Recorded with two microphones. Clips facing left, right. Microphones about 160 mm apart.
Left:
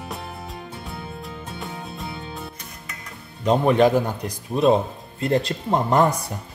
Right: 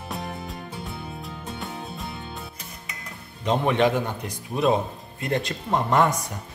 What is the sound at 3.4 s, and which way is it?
Speech, 40° left (ahead or behind).